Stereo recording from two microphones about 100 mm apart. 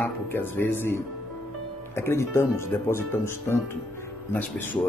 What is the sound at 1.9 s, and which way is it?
Speech, 25° left (ahead or behind).